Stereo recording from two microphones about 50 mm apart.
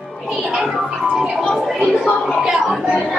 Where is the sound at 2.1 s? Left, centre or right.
Centre.